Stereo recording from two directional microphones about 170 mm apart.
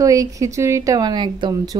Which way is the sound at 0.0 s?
20° right (ahead or behind).